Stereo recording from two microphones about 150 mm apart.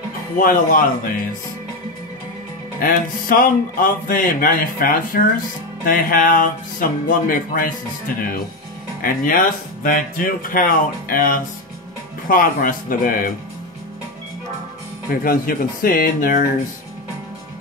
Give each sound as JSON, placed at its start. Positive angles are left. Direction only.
{"t": 0.4, "sound": "speech", "side_deg": 65}
{"t": 2.8, "sound": "speech", "side_deg": 70}
{"t": 9.0, "sound": "speech", "side_deg": 65}
{"t": 15.0, "sound": "speech", "side_deg": 75}